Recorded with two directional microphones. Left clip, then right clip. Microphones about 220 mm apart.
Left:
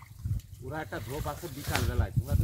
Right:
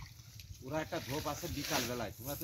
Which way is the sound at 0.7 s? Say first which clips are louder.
Left 1 dB; 50° right (ahead or behind).